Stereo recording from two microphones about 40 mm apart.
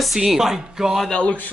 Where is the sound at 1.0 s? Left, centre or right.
Left.